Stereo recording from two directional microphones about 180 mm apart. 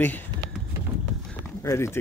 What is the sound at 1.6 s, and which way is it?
Speech, 15° left (ahead or behind).